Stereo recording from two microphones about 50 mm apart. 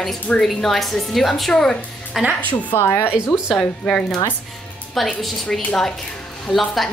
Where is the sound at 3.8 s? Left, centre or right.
Centre.